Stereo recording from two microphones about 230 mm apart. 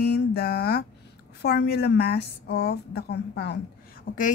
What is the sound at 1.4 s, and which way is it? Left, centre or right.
Speech, left.